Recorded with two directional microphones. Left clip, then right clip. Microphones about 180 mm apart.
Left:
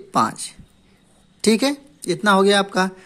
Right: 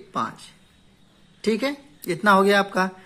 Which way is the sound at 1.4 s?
40° left (ahead or behind).